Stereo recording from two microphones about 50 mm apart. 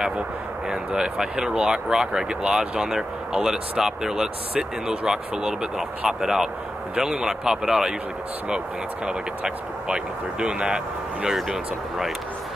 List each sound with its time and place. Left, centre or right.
0.7 s speech: centre